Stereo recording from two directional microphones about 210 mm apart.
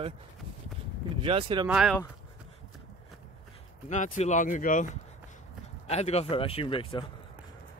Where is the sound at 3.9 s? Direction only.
35° left (ahead or behind).